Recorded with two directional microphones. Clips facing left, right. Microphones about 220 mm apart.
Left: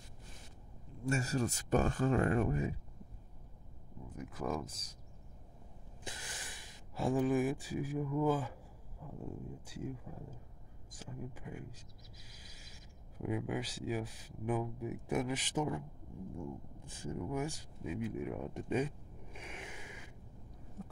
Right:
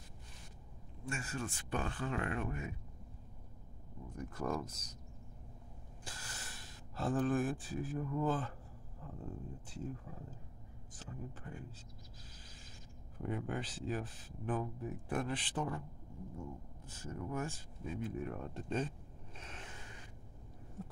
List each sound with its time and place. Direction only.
1.0 s speech: 40° left (ahead or behind)
4.1 s speech: 5° left (ahead or behind)
6.0 s speech: 15° left (ahead or behind)
13.2 s speech: 5° left (ahead or behind)
19.3 s a sound: 10° left (ahead or behind)